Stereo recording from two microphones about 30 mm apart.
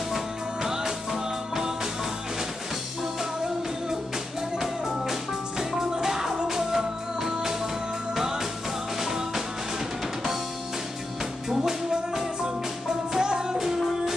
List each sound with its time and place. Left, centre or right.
0.6 s music: centre
4.6 s music: centre
11.9 s music: centre